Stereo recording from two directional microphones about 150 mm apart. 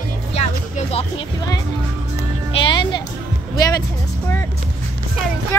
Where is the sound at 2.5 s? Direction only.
35° left (ahead or behind).